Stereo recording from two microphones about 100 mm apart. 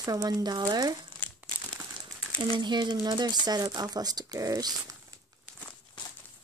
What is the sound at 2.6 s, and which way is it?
Speech, 45° right (ahead or behind).